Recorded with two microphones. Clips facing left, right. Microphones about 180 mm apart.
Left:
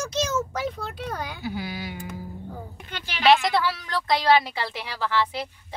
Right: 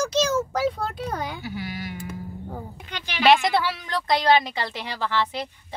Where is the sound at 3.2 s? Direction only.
Centre (ahead or behind).